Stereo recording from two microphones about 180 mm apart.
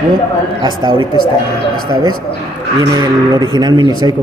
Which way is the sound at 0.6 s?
25° right (ahead or behind).